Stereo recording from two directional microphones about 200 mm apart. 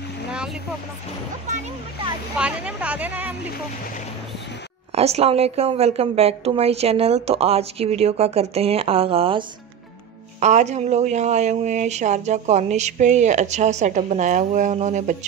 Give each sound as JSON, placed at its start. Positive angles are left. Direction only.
{"t": 0.3, "sound": "a sound", "side_deg": -5}
{"t": 2.3, "sound": "speech", "side_deg": -5}
{"t": 4.9, "sound": "speech", "side_deg": -30}